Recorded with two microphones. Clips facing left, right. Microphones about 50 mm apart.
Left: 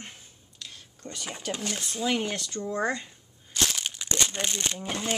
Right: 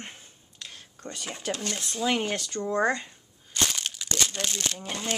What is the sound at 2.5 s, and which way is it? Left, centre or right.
Speech, right.